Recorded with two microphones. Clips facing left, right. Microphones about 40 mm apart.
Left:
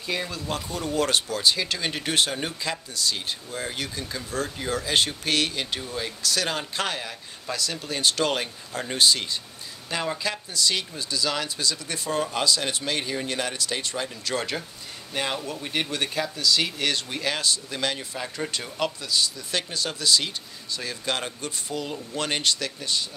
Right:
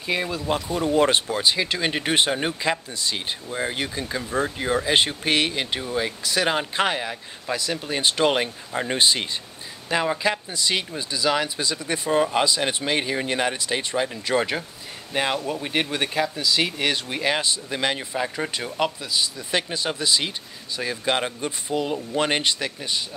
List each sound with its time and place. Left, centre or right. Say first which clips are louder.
0.0 s speech: right 4 dB; centre